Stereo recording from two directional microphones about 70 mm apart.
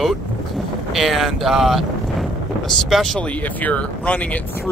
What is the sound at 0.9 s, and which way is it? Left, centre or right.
Speech, centre.